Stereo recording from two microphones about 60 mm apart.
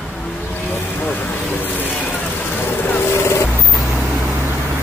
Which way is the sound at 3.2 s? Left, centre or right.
Left.